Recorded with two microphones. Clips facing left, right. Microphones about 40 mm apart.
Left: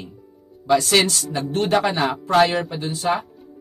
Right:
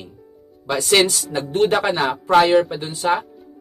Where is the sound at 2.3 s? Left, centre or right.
Right.